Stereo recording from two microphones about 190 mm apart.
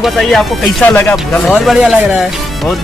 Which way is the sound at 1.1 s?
Centre (ahead or behind).